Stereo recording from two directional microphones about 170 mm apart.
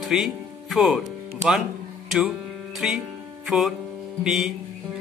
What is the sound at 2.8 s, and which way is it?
Speech, 5° right (ahead or behind).